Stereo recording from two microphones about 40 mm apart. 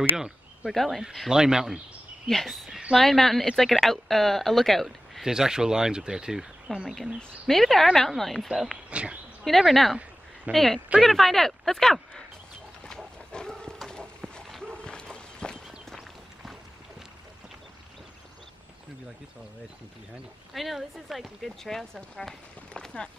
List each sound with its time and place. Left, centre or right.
0.7 s speech: centre
1.3 s speech: centre
2.2 s speech: centre
5.2 s speech: centre
7.4 s speech: centre
8.9 s speech: right
9.4 s speech: centre
12.8 s wild animals: centre
14.8 s a sound: left
15.1 s walk: left
20.5 s speech: centre